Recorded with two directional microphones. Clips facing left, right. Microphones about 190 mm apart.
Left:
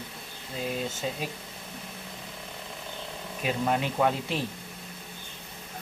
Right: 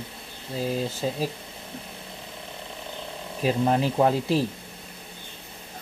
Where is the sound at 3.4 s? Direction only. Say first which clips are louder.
Right 5 dB; 35° right (ahead or behind).